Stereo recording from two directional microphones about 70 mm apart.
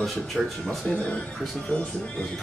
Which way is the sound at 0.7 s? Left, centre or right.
Centre.